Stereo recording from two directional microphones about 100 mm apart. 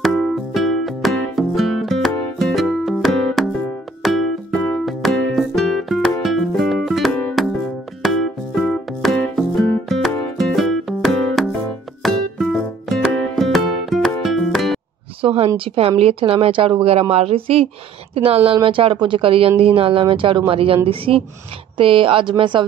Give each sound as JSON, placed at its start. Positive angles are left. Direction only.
{"t": 0.5, "sound": "music", "side_deg": 0}
{"t": 15.2, "sound": "speech", "side_deg": -70}
{"t": 17.1, "sound": "speech", "side_deg": -90}